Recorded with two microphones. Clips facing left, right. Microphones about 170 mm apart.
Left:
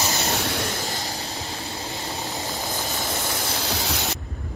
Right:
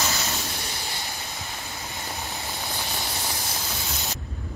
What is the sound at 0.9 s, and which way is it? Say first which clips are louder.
Train: left 5 dB; 40° left (ahead or behind).